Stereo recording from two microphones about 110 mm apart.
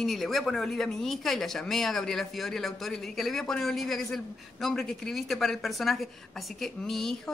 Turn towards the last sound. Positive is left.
turn(degrees=5)  # may be behind; listen again after turning